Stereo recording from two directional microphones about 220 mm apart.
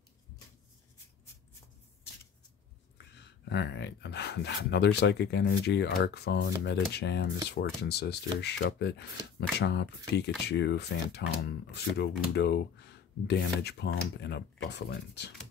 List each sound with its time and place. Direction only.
3.2 s speech: 50° left (ahead or behind)